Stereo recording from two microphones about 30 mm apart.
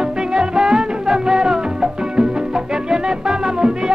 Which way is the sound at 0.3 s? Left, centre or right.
Right.